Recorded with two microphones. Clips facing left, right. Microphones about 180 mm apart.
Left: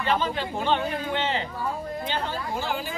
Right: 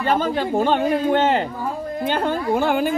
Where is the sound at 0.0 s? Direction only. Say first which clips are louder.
Right 6 dB; 45° right (ahead or behind).